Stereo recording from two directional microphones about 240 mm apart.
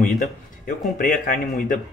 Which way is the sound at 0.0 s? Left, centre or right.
Left.